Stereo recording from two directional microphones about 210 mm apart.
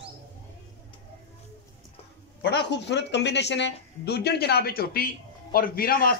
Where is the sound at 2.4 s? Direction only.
55° left (ahead or behind).